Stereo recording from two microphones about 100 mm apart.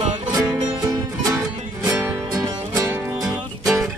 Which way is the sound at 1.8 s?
30° right (ahead or behind).